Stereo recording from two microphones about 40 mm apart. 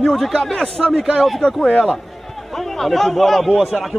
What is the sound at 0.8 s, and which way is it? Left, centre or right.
A man's voice, centre.